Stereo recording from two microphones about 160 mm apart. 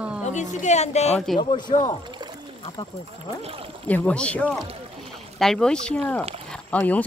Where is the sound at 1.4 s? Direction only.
30° left (ahead or behind).